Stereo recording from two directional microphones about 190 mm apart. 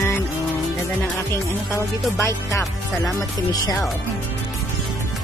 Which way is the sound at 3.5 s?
20° left (ahead or behind).